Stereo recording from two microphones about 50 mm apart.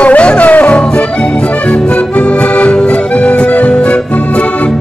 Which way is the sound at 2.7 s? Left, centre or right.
Centre.